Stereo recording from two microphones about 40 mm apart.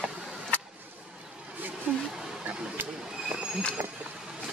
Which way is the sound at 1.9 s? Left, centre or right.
Right.